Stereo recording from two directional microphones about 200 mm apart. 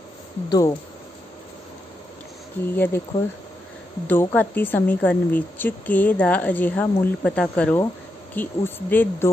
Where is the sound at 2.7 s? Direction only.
10° left (ahead or behind).